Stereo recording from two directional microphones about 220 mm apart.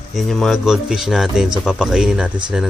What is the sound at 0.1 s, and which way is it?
Speech, centre (ahead or behind).